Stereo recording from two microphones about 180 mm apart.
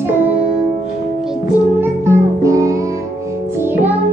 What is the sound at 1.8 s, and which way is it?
Music, 15° right (ahead or behind).